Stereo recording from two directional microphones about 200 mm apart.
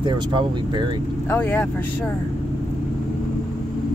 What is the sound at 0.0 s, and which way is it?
Speech, 25° right (ahead or behind).